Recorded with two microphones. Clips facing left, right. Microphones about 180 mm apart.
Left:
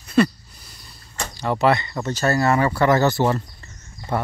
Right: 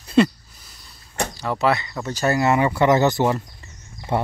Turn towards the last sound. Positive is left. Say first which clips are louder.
# right 2 dB
turn(degrees=-15)  # may be behind; listen again after turning